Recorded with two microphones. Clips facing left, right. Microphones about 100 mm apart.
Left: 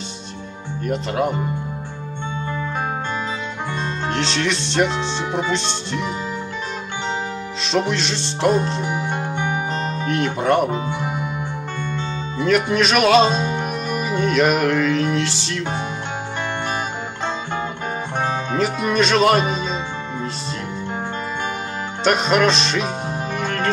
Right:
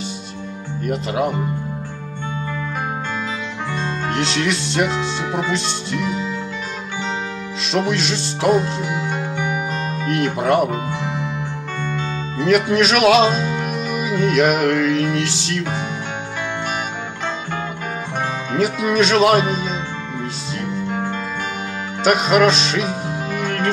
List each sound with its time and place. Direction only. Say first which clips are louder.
0.8 s music: even; 5° right (ahead or behind)
4.1 s music: right 1 dB; 5° right (ahead or behind)
7.9 s music: right 2 dB; centre (ahead or behind)
8.8 s music: even; 30° left (ahead or behind)
10.0 s music: right 1 dB; centre (ahead or behind)
12.4 s music: right 2 dB; 5° right (ahead or behind)
18.6 s music: right 3 dB; centre (ahead or behind)
22.0 s music: right 2 dB; 5° right (ahead or behind)